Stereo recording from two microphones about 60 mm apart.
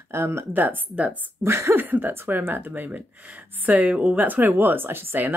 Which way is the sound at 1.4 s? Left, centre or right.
Right.